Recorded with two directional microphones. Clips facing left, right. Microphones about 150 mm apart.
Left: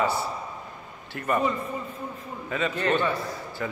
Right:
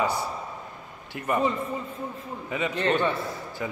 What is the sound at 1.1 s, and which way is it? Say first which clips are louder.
Speech: left 1 dB; 15° right (ahead or behind).